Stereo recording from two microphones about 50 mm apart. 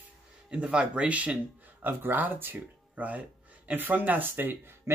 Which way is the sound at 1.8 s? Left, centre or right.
Right.